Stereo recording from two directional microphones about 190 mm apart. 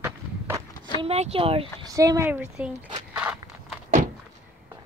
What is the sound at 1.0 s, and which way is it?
Speech, 30° right (ahead or behind).